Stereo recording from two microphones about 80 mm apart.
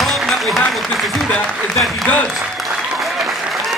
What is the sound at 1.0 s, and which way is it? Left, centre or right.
Speech, centre.